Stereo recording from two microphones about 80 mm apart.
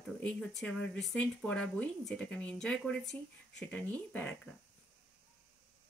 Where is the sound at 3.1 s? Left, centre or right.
Left.